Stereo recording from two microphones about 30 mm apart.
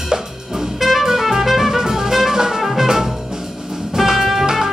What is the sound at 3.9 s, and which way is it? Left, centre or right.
Music, centre.